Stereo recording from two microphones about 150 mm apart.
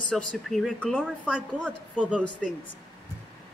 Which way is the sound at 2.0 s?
10° right (ahead or behind).